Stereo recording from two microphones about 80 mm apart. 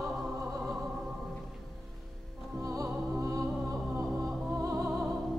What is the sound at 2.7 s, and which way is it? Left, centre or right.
Music, right.